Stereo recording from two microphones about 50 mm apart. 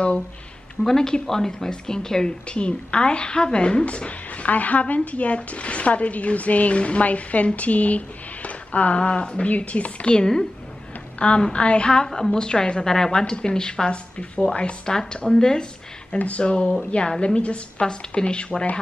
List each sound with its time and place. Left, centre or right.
0.8 s a woman's voice: centre; by 10.1 s left
10.1 s a woman's voice: centre
11.1 s a woman's voice: left
16.2 s a woman's voice: left